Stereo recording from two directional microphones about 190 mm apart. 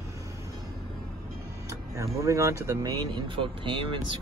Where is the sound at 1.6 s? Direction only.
15° right (ahead or behind).